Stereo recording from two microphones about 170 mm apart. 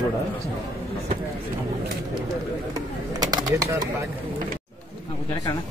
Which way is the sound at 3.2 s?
20° right (ahead or behind).